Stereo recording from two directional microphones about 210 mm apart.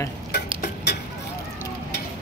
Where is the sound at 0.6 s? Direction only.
50° left (ahead or behind).